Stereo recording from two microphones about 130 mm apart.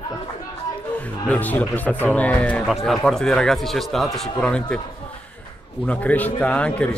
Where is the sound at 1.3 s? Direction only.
10° left (ahead or behind).